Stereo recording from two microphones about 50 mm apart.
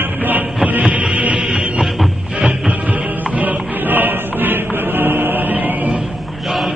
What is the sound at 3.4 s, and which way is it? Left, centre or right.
Music, right.